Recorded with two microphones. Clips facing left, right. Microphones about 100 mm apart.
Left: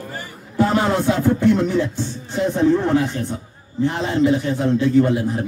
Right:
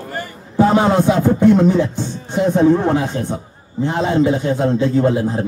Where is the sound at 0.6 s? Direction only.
20° right (ahead or behind).